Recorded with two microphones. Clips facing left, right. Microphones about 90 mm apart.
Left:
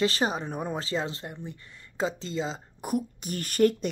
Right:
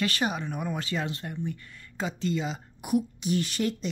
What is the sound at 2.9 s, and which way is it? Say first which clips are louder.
Speech: right 4 dB; 45° left (ahead or behind).